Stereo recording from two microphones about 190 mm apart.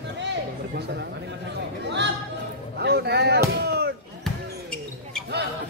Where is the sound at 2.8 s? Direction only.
60° right (ahead or behind).